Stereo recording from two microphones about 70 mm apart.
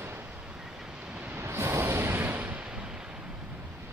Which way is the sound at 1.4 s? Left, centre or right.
Right.